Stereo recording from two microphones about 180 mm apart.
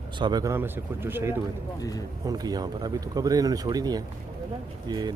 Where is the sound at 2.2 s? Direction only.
20° right (ahead or behind).